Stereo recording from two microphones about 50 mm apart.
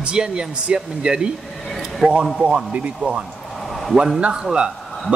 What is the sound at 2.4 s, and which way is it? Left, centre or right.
Speech, right.